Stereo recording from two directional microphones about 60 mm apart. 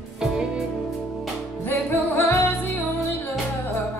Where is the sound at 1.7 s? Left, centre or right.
Left.